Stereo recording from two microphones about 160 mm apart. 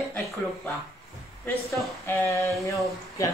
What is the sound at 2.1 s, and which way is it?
Speech, 15° left (ahead or behind).